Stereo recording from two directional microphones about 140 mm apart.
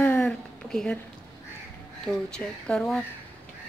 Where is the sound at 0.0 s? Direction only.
15° left (ahead or behind).